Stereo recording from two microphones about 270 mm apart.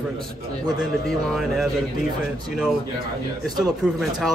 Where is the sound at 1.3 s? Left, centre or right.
Centre.